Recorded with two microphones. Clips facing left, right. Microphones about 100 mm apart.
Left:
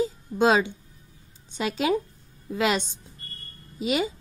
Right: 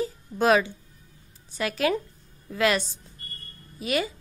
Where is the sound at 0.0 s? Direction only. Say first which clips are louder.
Left 2 dB; 20° left (ahead or behind).